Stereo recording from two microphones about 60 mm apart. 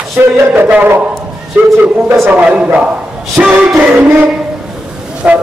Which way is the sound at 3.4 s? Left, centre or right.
Right.